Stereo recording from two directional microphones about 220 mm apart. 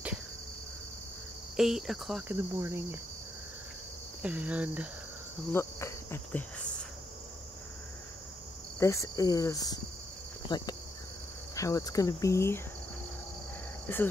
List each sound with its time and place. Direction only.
1.6 s cricket: centre (ahead or behind)
4.2 s cricket: 5° right (ahead or behind)
5.5 s cricket: 10° left (ahead or behind)
8.7 s cricket: 15° left (ahead or behind)
10.5 s speech: 20° left (ahead or behind)
11.5 s cricket: 15° left (ahead or behind)